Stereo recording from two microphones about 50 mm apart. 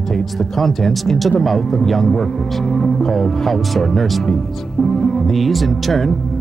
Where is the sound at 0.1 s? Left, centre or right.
Centre.